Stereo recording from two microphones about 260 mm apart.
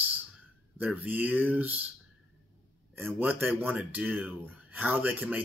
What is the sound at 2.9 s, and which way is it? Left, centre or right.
Speech, centre.